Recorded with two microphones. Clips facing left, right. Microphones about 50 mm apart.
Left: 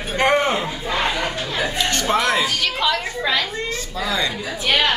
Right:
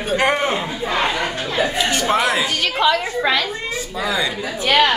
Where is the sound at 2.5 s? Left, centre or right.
Right.